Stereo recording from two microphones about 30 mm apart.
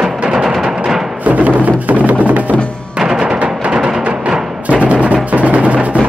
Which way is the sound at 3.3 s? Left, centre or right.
Right.